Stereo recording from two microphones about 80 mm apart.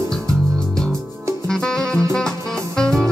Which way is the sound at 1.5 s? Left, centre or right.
Centre.